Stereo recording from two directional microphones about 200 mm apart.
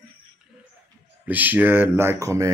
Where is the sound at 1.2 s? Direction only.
10° right (ahead or behind).